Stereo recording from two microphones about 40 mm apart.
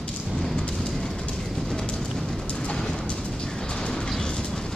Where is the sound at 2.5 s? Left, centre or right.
Centre.